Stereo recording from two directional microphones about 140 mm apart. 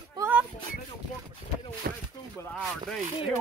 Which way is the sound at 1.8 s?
90° right.